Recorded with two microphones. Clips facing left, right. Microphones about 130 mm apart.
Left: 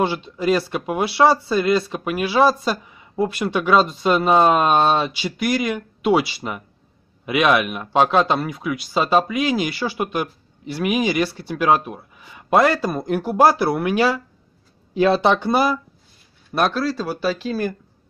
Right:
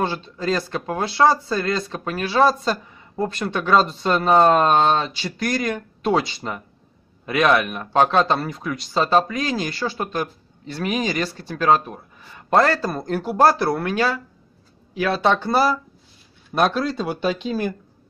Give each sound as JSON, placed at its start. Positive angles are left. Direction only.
{"t": 0.0, "sound": "speech", "side_deg": 15}
{"t": 13.2, "sound": "speech", "side_deg": 5}
{"t": 16.7, "sound": "speech", "side_deg": 0}